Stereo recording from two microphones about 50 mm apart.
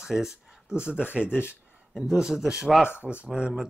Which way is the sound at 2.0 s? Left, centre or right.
Centre.